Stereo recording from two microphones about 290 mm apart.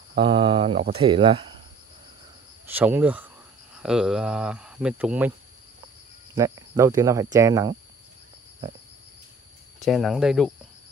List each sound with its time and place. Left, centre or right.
0.1 s speech: centre
2.6 s cricket: centre
3.7 s speech: centre
6.3 s speech: centre
9.8 s speech: centre